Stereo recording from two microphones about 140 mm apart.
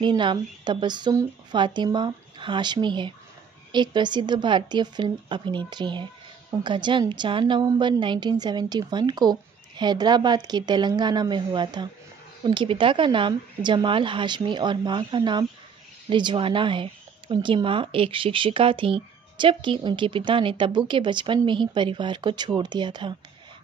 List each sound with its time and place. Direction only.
0.0 s speech: 35° right (ahead or behind)